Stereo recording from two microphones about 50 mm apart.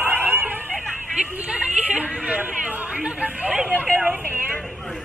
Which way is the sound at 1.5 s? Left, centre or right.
Centre.